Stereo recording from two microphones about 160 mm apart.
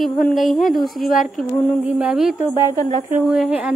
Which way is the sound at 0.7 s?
65° left (ahead or behind).